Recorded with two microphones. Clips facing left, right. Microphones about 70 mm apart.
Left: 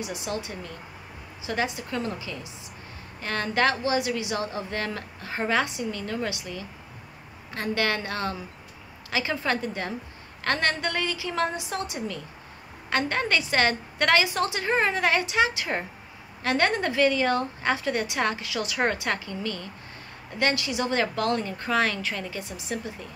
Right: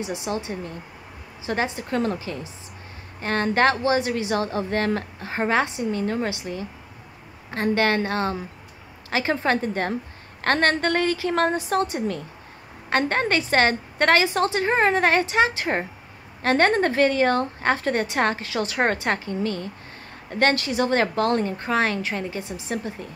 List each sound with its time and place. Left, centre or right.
0.0 s a woman's voice: right